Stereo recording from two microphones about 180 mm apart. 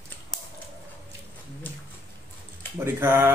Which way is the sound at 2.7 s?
15° right (ahead or behind).